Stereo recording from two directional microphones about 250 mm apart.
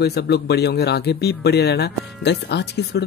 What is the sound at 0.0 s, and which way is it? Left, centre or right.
Speech, left.